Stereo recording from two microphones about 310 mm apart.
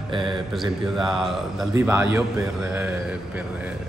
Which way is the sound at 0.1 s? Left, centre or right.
Centre.